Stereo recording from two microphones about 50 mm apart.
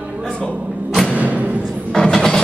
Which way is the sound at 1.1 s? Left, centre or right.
Right.